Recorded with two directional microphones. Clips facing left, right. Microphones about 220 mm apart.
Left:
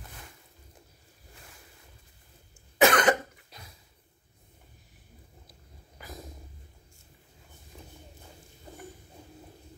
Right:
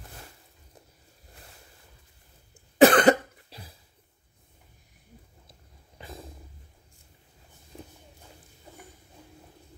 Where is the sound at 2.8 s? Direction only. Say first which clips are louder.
Right 5 dB; 35° right (ahead or behind).